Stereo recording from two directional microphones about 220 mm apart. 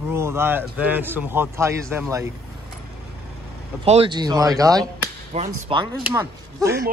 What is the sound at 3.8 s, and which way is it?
A man's voice, 25° right (ahead or behind).